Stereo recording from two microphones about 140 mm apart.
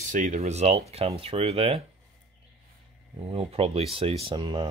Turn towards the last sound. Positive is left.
turn(degrees=-35)  # may be behind; listen again after turning